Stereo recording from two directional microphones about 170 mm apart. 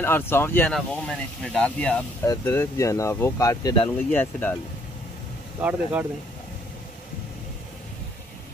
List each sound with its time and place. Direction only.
0.0 s speech: 15° left (ahead or behind)
4.1 s speech: 10° left (ahead or behind)
5.6 s speech: 10° right (ahead or behind)